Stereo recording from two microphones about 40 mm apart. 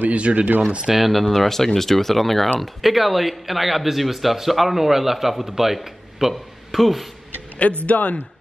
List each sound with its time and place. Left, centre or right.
0.1 s speech: right
0.8 s speech: centre
7.8 s a man's voice: left